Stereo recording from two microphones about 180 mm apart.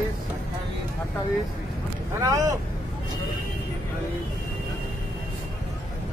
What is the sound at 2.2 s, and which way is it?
Speech, 20° right (ahead or behind).